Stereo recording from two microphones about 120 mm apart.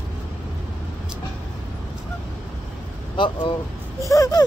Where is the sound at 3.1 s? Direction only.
45° left (ahead or behind).